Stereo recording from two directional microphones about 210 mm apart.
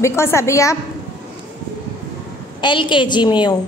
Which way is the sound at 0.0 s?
10° left (ahead or behind).